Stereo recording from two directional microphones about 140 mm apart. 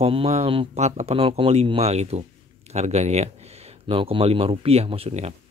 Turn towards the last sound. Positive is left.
turn(degrees=-45)  # may be behind; listen again after turning